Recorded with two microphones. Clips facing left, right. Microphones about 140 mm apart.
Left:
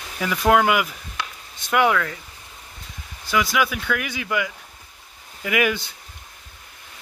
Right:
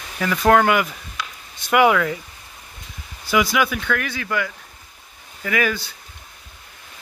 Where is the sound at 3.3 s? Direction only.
Centre (ahead or behind); by 5.9 s 20° left (ahead or behind).